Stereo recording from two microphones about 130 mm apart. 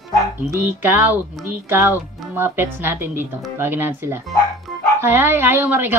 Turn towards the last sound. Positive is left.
turn(degrees=-15)  # may be behind; listen again after turning